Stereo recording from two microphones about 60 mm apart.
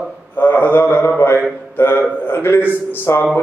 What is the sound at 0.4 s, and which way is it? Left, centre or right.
A man's voice, left.